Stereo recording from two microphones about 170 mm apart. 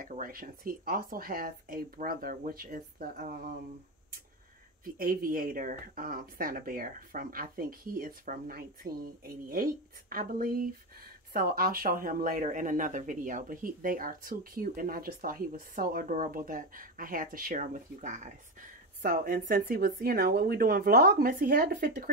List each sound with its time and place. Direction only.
0.0 s speech: 55° right (ahead or behind)
4.8 s speech: 55° right (ahead or behind)